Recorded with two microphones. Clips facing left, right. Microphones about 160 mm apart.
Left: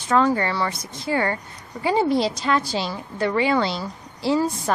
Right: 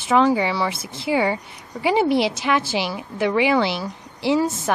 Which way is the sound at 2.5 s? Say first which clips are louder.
Right 1 dB; 5° right (ahead or behind).